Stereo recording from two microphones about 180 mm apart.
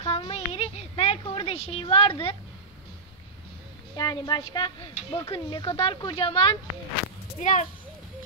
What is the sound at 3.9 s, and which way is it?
A woman's voice, 20° left (ahead or behind).